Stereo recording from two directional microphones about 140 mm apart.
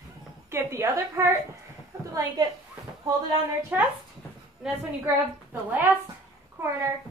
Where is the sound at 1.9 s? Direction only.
20° right (ahead or behind).